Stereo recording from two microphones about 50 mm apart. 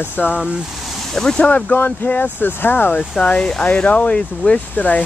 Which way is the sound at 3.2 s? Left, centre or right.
Centre.